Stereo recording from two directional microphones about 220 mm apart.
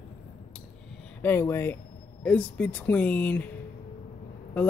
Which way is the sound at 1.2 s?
10° left (ahead or behind).